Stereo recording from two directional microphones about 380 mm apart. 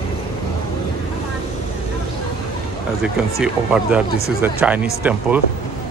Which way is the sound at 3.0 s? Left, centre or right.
Centre.